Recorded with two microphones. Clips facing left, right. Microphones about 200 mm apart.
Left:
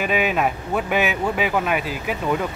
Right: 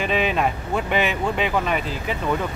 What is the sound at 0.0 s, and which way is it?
Speech, 5° left (ahead or behind).